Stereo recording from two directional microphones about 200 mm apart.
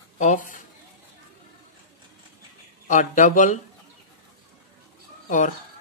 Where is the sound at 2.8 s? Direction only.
40° left (ahead or behind).